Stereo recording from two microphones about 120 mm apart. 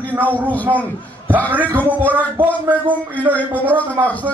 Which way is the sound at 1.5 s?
15° right (ahead or behind).